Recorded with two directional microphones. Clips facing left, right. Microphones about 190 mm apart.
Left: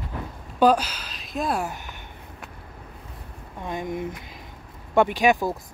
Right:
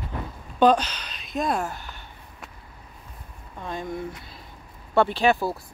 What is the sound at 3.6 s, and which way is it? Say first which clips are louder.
Speech: left 2 dB; 15° left (ahead or behind).